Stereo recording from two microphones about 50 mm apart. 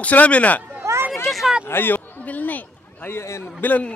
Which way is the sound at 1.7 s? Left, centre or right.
Left.